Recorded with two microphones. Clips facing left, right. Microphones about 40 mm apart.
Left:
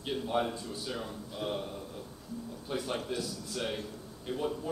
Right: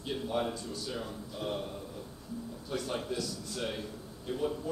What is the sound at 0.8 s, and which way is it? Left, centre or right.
Speech, centre.